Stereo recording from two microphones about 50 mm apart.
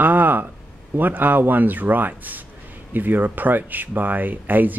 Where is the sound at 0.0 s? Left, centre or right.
Right.